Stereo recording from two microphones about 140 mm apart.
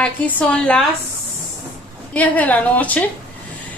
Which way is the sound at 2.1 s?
10° left (ahead or behind).